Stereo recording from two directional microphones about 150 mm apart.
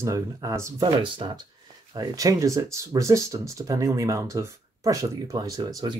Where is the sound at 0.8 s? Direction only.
35° right (ahead or behind).